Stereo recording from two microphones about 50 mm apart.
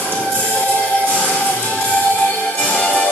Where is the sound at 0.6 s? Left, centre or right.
Left.